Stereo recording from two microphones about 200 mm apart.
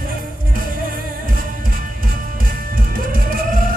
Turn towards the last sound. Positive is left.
turn(degrees=-45)  # may be behind; listen again after turning